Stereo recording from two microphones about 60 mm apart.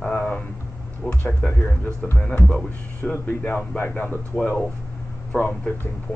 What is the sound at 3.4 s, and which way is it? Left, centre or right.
Speech, left.